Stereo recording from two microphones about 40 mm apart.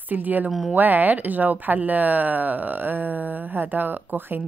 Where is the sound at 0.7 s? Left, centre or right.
Right.